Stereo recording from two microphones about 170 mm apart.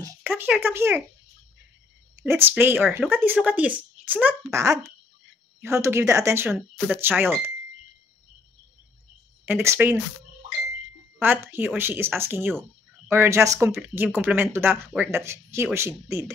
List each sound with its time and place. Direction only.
0.0 s speech: 10° right (ahead or behind)
2.2 s speech: 10° right (ahead or behind)
9.5 s speech: 15° right (ahead or behind)
11.1 s speech: 10° right (ahead or behind)